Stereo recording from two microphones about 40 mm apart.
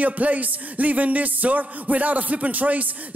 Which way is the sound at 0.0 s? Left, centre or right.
Right.